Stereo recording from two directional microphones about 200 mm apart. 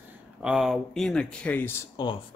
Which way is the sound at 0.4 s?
Centre (ahead or behind).